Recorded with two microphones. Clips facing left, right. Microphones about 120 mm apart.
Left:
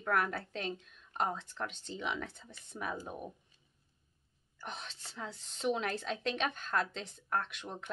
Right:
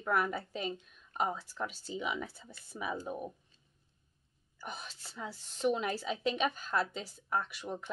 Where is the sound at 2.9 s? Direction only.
10° left (ahead or behind).